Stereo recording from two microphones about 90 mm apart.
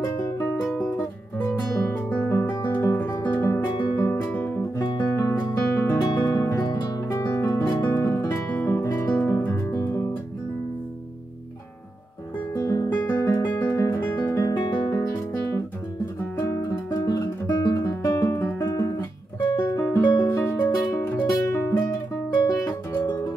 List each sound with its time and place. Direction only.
0.0 s music: 30° left (ahead or behind)
1.6 s guitar: 40° left (ahead or behind)
1.9 s guitar: 25° left (ahead or behind)
3.3 s music: 30° left (ahead or behind)
4.7 s guitar: 45° left (ahead or behind)
6.6 s music: 45° left (ahead or behind)
12.5 s guitar: 35° left (ahead or behind)
14.4 s guitar: 50° left (ahead or behind)
14.9 s music: 40° left (ahead or behind)
18.0 s music: 35° left (ahead or behind)